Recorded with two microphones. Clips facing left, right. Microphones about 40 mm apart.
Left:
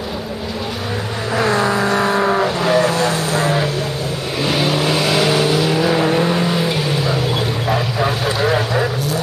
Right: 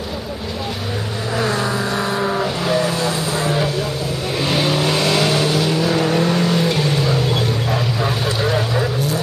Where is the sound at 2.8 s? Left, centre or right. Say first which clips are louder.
Left 3 dB; left.